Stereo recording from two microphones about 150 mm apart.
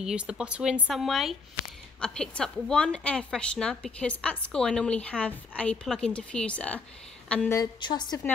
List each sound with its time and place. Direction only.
0.0 s a woman's voice: 5° right (ahead or behind)
7.5 s a woman's voice: 30° left (ahead or behind)